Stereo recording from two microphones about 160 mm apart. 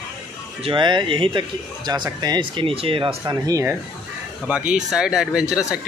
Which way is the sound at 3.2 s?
20° right (ahead or behind).